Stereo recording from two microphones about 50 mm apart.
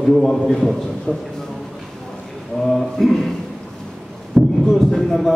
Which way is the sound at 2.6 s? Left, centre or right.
Centre.